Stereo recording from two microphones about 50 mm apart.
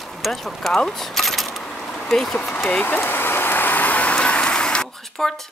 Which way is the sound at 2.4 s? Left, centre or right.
Left.